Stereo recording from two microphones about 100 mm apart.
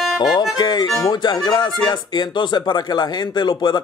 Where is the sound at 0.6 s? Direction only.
45° left (ahead or behind).